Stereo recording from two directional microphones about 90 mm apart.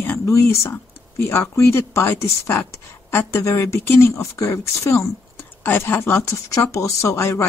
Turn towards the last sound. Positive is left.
turn(degrees=30)  # may be behind; listen again after turning